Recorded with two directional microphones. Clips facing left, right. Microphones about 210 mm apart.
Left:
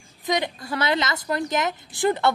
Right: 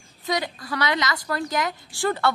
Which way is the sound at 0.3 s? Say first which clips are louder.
Left 2 dB; 25° left (ahead or behind).